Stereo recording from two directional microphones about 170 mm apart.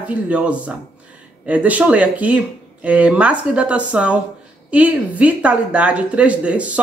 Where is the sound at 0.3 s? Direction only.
10° right (ahead or behind).